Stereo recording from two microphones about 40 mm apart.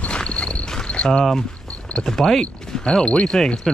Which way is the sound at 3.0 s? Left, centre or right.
Left.